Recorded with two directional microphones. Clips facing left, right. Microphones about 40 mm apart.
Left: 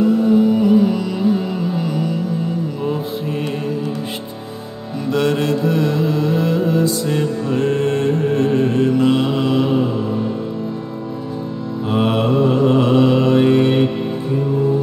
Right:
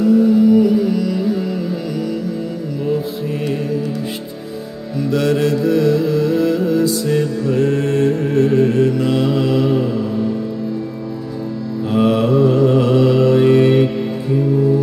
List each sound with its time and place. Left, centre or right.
0.3 s music: left
4.9 s music: centre
11.9 s mantra: left